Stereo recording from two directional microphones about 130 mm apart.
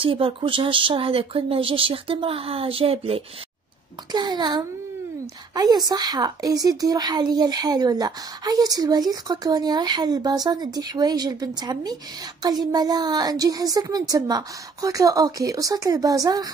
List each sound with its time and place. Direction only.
0.0 s speech: 45° right (ahead or behind)
4.1 s a woman's voice: 35° right (ahead or behind)